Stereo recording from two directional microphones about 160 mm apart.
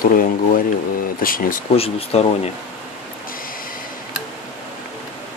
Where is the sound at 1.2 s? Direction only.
60° left (ahead or behind).